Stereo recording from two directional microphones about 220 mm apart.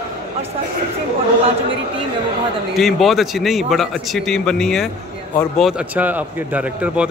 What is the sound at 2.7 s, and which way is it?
Speech, centre (ahead or behind).